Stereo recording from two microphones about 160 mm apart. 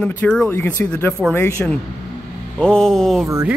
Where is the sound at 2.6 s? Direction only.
5° left (ahead or behind).